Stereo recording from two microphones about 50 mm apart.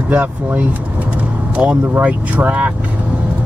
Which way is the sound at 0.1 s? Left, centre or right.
Right.